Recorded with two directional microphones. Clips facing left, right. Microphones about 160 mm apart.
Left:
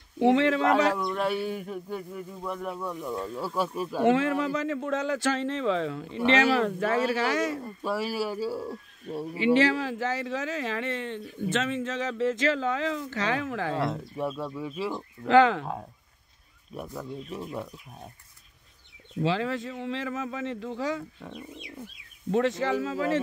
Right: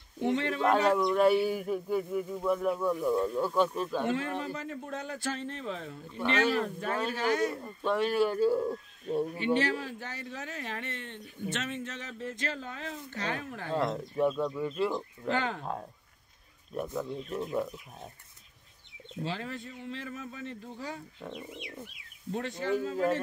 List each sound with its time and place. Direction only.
0.2 s speech: 90° left
1.1 s speech: centre (ahead or behind)
4.0 s speech: 90° left
7.8 s speech: 5° left (ahead or behind)
9.4 s speech: 90° left
13.7 s speech: centre (ahead or behind)
15.2 s speech: 90° left
16.7 s speech: centre (ahead or behind)
19.2 s speech: 90° left
21.2 s speech: centre (ahead or behind)
22.3 s speech: 90° left